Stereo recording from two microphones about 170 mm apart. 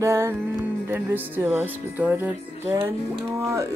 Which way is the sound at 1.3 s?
10° right (ahead or behind).